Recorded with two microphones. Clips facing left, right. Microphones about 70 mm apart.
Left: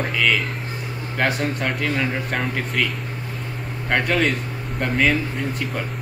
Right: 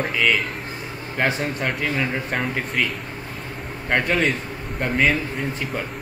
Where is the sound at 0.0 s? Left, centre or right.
Centre.